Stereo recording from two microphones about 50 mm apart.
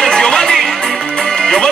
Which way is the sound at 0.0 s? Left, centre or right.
Centre.